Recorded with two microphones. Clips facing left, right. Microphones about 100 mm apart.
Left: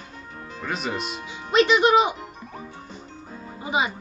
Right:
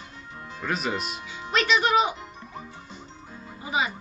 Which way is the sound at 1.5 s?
20° left (ahead or behind).